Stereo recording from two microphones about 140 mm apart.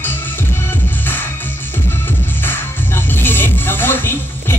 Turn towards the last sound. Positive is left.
turn(degrees=15)  # may be behind; listen again after turning